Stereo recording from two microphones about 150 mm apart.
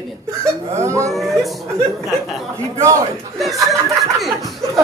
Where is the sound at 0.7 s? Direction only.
20° right (ahead or behind).